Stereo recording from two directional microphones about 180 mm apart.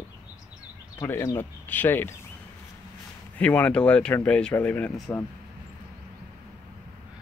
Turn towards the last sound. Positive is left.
turn(degrees=10)  # may be behind; listen again after turning